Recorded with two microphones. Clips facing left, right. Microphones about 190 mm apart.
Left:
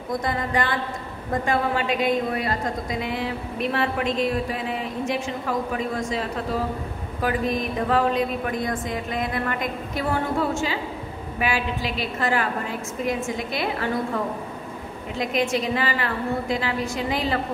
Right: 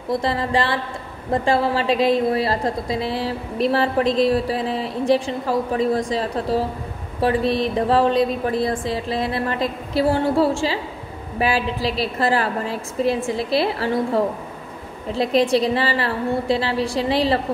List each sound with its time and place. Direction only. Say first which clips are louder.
0.1 s a woman's voice: right 4 dB; 30° right (ahead or behind)